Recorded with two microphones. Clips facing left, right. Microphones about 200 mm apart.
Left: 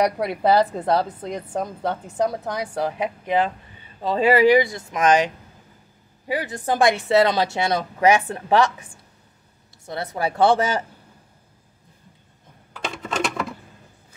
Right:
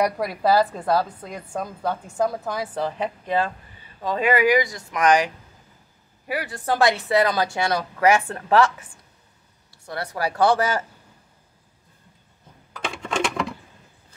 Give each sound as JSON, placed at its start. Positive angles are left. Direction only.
{"t": 0.0, "sound": "a woman's voice", "side_deg": 25}
{"t": 4.0, "sound": "a woman's voice", "side_deg": 30}
{"t": 9.8, "sound": "a woman's voice", "side_deg": 20}
{"t": 12.7, "sound": "coin", "side_deg": 5}